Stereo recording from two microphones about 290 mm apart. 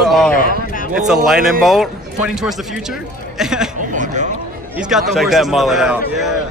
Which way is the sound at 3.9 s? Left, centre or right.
Right.